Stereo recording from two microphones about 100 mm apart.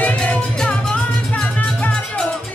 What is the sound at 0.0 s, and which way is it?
Music, 15° left (ahead or behind).